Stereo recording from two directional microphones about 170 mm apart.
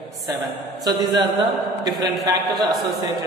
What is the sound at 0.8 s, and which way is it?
A woman's voice, 25° right (ahead or behind).